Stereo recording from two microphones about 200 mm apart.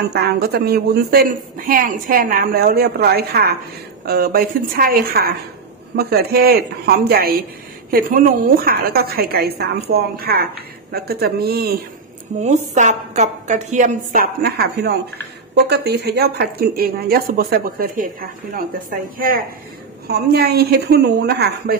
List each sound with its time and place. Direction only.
0.1 s a woman's voice: 50° right (ahead or behind)
12.4 s a woman's voice: 35° right (ahead or behind); by 21.7 s 55° right (ahead or behind)